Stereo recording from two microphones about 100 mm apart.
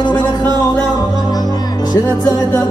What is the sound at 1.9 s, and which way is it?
Music, 35° left (ahead or behind).